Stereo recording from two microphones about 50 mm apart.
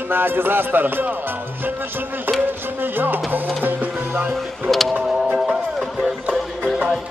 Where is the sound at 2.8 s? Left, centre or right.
Right.